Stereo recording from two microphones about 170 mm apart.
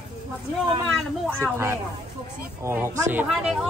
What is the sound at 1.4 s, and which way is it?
Speech, 15° right (ahead or behind).